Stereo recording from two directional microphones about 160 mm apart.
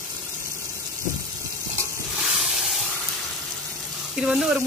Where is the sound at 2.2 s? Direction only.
Centre (ahead or behind).